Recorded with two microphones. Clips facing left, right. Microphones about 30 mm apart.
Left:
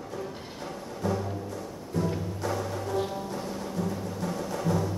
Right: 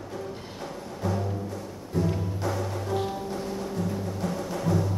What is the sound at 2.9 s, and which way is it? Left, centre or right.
Music, right.